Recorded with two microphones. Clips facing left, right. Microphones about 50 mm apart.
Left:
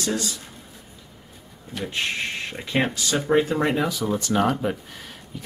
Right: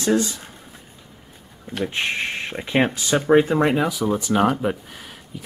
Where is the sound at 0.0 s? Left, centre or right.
Right.